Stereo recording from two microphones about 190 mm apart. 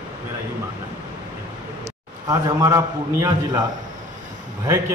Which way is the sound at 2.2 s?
15° right (ahead or behind).